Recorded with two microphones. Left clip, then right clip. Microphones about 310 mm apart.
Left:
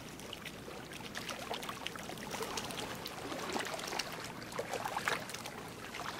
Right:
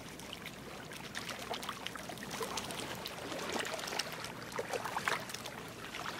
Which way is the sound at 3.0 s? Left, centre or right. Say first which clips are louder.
Even; right.